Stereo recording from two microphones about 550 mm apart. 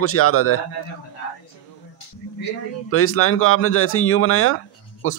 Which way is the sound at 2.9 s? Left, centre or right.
Left.